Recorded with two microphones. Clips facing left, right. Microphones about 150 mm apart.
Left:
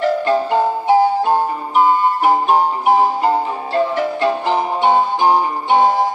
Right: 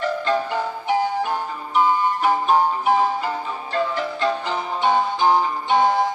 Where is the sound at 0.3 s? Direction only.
30° left (ahead or behind).